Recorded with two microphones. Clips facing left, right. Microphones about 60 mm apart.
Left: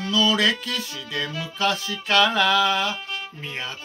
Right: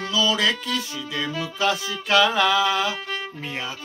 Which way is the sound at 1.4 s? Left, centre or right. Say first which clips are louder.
Right 1 dB; centre.